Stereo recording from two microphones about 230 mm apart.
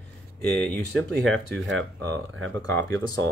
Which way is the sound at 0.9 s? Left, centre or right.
Right.